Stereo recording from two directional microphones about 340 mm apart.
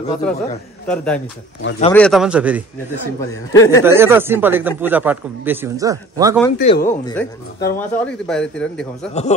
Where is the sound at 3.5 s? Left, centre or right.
Centre.